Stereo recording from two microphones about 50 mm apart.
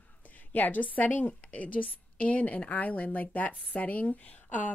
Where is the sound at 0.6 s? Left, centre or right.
Left.